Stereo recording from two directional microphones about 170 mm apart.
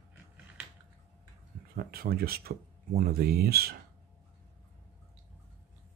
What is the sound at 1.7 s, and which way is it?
Speech, 60° right (ahead or behind).